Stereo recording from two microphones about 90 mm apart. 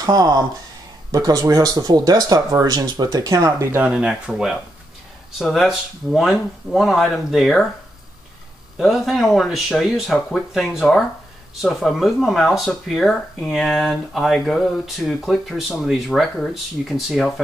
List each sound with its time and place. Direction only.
0.0 s speech: 45° right (ahead or behind)
3.8 s speech: 10° right (ahead or behind)
8.7 s speech: centre (ahead or behind)